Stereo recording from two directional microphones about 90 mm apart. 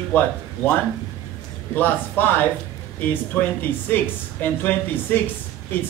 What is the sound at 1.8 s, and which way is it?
Speech, 20° left (ahead or behind).